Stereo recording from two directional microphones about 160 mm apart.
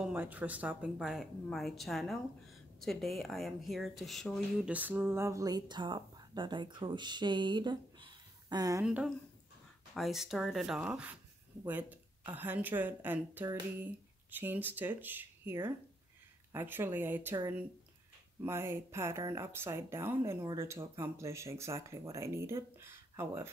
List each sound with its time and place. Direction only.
0.0 s speech: 10° right (ahead or behind)
4.6 s speech: 10° right (ahead or behind)
8.8 s speech: 5° right (ahead or behind)
18.4 s speech: 15° right (ahead or behind)